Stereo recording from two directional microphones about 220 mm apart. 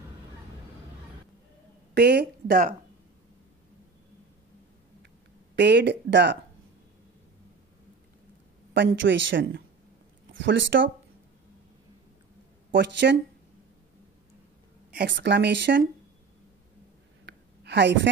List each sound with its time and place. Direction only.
2.0 s speech: 50° right (ahead or behind)
5.6 s speech: 50° right (ahead or behind)
8.7 s speech: 55° right (ahead or behind)
12.7 s speech: 50° right (ahead or behind)
14.9 s speech: 50° right (ahead or behind)
17.3 s a sound: 50° right (ahead or behind)